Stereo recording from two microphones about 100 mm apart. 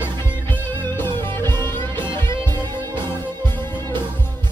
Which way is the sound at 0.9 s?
20° left (ahead or behind).